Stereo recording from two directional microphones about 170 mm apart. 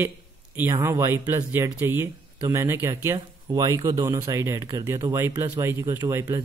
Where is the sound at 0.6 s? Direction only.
15° right (ahead or behind).